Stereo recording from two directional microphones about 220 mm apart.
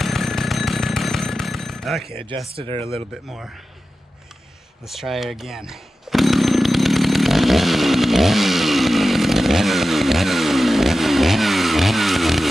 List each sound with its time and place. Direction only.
0.0 s a sound: centre (ahead or behind)
2.1 s speech: 25° right (ahead or behind)
4.8 s chainsaw: centre (ahead or behind)